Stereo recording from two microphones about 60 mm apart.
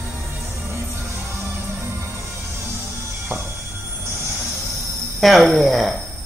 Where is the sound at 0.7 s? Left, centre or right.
Right.